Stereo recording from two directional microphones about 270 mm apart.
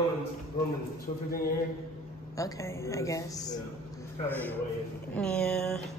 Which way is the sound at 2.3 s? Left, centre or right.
Centre.